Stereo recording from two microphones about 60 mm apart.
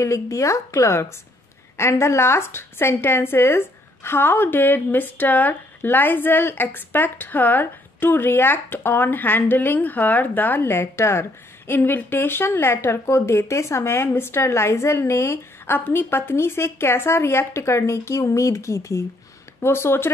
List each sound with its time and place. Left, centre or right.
0.0 s a woman's voice: left
10.7 s a woman's voice: left
19.6 s a woman's voice: left